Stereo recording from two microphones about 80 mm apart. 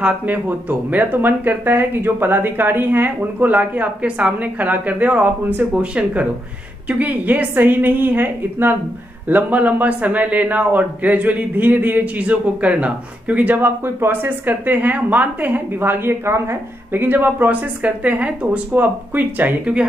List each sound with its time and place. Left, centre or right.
0.0 s a woman's voice: centre